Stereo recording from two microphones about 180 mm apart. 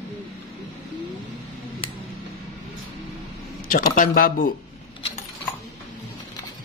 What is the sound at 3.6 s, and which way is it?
Speech, 50° left (ahead or behind).